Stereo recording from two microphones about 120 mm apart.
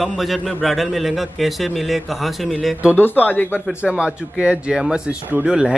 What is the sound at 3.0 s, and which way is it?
Speech, 15° left (ahead or behind).